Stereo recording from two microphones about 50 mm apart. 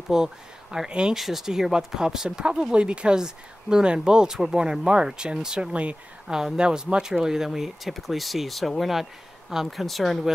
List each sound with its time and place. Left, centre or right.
0.1 s speech: centre
1.1 s speech: centre; by 5.9 s right
6.2 s speech: centre